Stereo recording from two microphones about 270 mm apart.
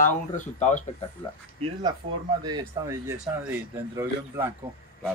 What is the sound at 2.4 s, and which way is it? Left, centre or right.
Speech, centre.